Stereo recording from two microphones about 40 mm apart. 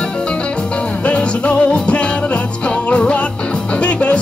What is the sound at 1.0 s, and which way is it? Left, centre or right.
Music, left.